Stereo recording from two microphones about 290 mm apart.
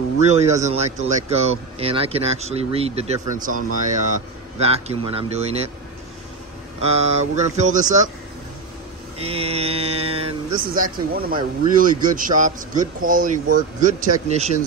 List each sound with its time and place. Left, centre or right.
0.2 s speech: right
6.8 s speech: right
9.2 s speech: centre